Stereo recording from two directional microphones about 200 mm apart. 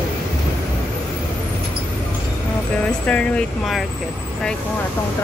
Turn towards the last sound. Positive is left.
turn(degrees=0)  # may be behind; listen again after turning